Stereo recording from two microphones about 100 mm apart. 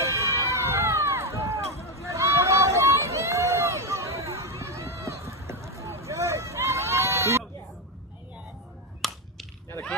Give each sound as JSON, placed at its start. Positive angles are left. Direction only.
{"t": 0.0, "sound": "crowd", "side_deg": -30}
{"t": 2.0, "sound": "a sound", "side_deg": -30}
{"t": 9.0, "sound": "whip", "side_deg": 0}